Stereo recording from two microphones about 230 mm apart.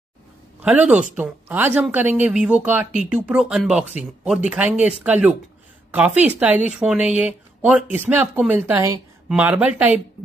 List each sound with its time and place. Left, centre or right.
0.6 s a woman's voice: centre